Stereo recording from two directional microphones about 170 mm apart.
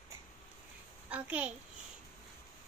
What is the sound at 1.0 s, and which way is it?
Speech, 10° right (ahead or behind).